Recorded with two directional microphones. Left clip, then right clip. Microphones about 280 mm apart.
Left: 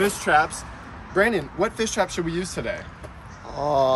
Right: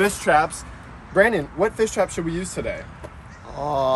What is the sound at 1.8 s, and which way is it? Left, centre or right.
Speech, centre.